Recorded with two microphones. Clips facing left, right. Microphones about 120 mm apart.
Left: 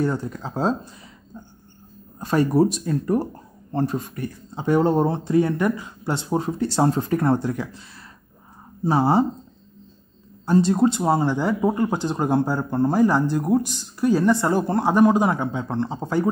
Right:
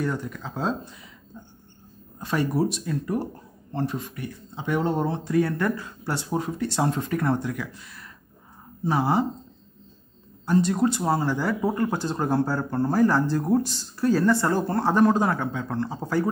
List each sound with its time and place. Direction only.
0.0 s speech: 30° left (ahead or behind)
2.1 s speech: 40° left (ahead or behind)
5.3 s speech: 20° left (ahead or behind)
10.4 s speech: 30° left (ahead or behind)